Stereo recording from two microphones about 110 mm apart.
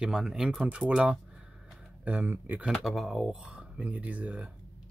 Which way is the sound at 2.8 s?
Centre (ahead or behind).